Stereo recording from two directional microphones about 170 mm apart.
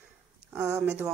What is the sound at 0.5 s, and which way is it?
Speech, 10° right (ahead or behind).